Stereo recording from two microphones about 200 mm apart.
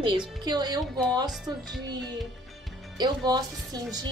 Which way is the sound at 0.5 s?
20° right (ahead or behind).